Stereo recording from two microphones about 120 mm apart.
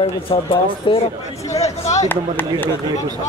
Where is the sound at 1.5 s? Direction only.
65° left (ahead or behind).